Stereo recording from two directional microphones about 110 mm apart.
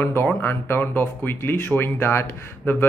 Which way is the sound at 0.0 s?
20° left (ahead or behind).